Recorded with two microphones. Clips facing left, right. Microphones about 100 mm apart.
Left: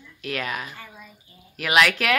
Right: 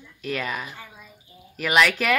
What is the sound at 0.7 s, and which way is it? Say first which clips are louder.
Speech: even; 15° right (ahead or behind).